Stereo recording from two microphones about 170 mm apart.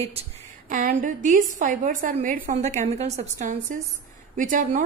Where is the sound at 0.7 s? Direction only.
50° right (ahead or behind).